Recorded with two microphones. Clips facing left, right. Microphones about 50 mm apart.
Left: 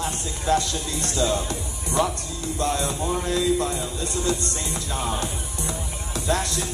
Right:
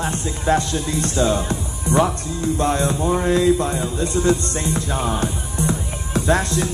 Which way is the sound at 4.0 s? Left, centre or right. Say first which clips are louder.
Right 9 dB; right.